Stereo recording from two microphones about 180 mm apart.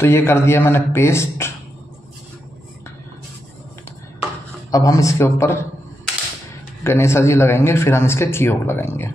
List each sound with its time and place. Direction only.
0.0 s a man's voice: 15° left (ahead or behind)
4.6 s a man's voice: 20° left (ahead or behind)
6.8 s a man's voice: 15° left (ahead or behind)